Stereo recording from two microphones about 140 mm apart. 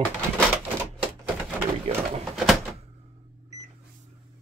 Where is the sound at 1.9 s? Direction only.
45° right (ahead or behind).